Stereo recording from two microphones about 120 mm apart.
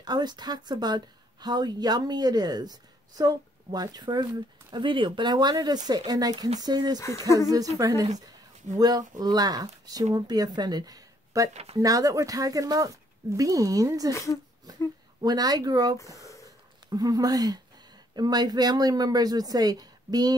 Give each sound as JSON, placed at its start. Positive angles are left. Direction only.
{"t": 0.0, "sound": "speech", "side_deg": -35}
{"t": 7.0, "sound": "speech", "side_deg": 25}
{"t": 7.5, "sound": "speech", "side_deg": -30}
{"t": 11.5, "sound": "speech", "side_deg": -60}
{"t": 11.8, "sound": "speech", "side_deg": -30}
{"t": 14.1, "sound": "speech", "side_deg": 25}
{"t": 15.2, "sound": "speech", "side_deg": -35}